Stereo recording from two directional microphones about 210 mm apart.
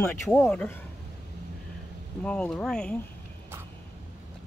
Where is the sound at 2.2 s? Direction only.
5° left (ahead or behind).